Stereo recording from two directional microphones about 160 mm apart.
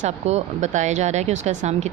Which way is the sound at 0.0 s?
50° right (ahead or behind).